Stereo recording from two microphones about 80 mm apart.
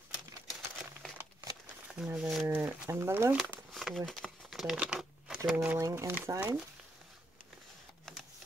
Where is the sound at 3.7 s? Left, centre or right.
Centre.